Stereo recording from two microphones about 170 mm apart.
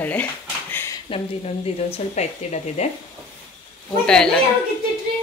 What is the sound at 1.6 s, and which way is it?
Speech, 40° left (ahead or behind).